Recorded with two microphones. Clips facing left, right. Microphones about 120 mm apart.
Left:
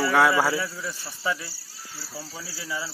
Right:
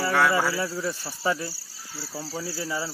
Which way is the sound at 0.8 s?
40° right (ahead or behind).